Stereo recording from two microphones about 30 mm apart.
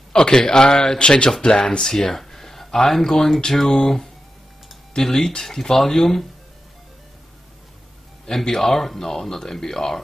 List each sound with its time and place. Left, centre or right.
0.1 s speech: left
8.5 s speech: centre